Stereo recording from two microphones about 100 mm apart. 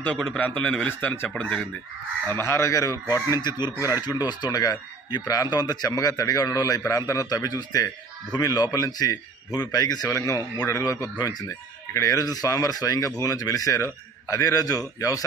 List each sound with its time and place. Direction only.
0.4 s a man's voice: 15° left (ahead or behind)
2.2 s speech: 25° left (ahead or behind)